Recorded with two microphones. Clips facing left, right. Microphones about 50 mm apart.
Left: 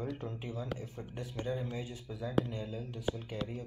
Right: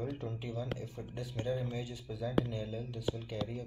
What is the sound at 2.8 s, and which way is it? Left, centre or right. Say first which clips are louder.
Speech: even; left.